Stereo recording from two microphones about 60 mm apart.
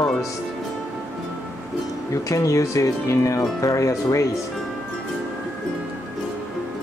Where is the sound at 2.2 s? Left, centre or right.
Left.